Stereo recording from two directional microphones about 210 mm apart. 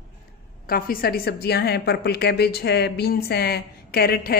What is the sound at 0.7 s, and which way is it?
A woman's voice, 45° left (ahead or behind).